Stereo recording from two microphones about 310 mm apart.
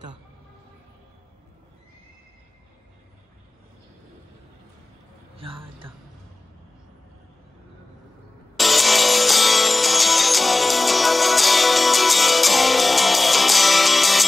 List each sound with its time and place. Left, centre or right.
5.4 s speech: centre
8.5 s music: centre